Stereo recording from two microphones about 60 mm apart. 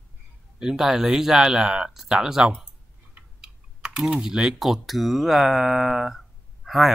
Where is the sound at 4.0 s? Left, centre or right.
Centre.